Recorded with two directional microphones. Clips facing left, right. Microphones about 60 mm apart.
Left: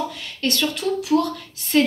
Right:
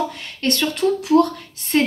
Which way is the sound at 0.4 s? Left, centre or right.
Right.